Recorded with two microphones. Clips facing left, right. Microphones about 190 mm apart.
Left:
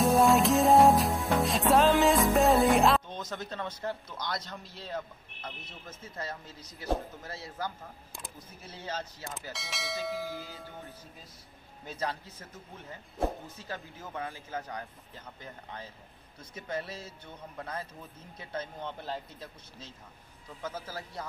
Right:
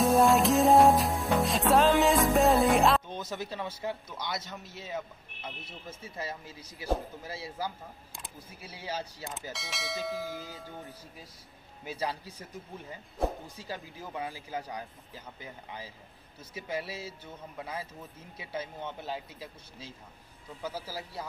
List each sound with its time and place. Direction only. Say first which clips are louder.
0.0 s music: even; centre (ahead or behind)
5.9 s speech: right 1 dB; 10° right (ahead or behind)
9.5 s a man's voice: left 1 dB; centre (ahead or behind)
10.3 s speech: right 1 dB; 15° right (ahead or behind)
13.6 s a man's voice: right 1 dB; 15° right (ahead or behind)